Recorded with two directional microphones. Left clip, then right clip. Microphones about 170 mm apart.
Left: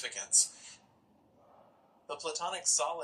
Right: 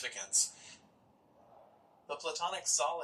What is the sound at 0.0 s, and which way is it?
Speech, 40° left (ahead or behind).